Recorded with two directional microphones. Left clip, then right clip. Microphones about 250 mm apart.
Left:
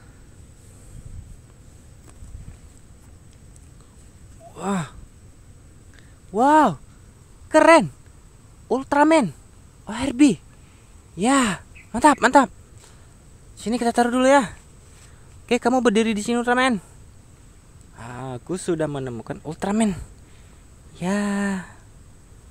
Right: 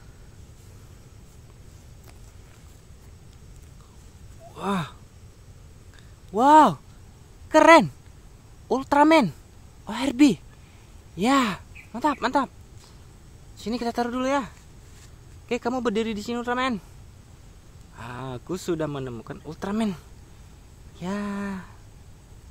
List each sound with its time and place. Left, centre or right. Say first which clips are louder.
4.6 s speech: left 1 dB; centre
6.3 s speech: right 1 dB; centre
12.0 s speech: left 9 dB; left
13.6 s speech: left 7 dB; centre
17.9 s speech: left 2 dB; centre